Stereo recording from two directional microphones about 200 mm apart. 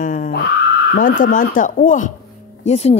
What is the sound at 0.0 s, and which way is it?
A woman's voice, 40° left (ahead or behind).